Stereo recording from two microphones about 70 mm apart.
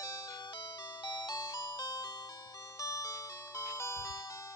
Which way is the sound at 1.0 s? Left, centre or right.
Left.